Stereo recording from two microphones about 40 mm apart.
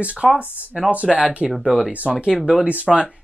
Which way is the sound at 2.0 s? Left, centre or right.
Right.